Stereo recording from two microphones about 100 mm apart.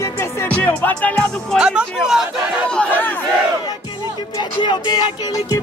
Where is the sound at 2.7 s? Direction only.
15° left (ahead or behind).